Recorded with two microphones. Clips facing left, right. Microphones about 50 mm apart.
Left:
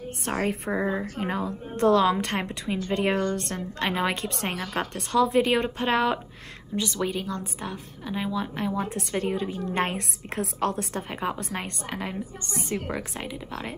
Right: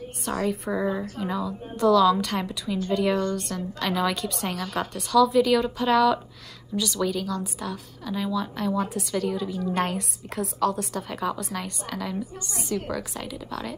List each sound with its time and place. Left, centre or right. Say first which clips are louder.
0.2 s a woman's voice: right 1 dB; left
0.7 s a woman's voice: even; left
1.1 s a woman's voice: even; left
8.8 s a woman's voice: right 1 dB; left
13.1 s a woman's voice: right 1 dB; left